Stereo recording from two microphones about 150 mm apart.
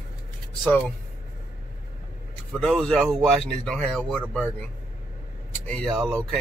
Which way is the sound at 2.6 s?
5° left (ahead or behind).